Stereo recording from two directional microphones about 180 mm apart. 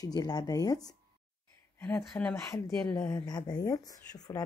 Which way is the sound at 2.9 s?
20° left (ahead or behind).